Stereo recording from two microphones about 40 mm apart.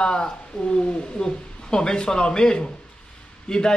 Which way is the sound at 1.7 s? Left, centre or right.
Centre.